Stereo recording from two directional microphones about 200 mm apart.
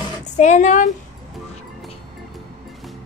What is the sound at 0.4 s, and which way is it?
Speech, 35° left (ahead or behind).